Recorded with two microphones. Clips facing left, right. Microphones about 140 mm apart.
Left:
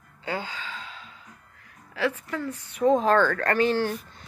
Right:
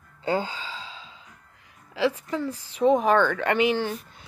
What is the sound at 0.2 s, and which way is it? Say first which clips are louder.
Gasp: right 6 dB; 35° right (ahead or behind).